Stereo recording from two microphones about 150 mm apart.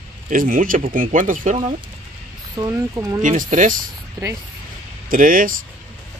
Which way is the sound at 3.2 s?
55° right (ahead or behind).